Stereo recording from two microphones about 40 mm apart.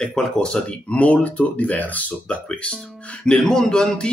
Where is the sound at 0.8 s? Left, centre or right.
Left.